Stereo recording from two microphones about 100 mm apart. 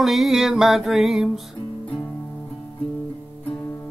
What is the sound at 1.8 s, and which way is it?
Music, 15° left (ahead or behind).